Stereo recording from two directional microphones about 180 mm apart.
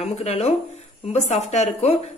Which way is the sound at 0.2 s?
35° left (ahead or behind).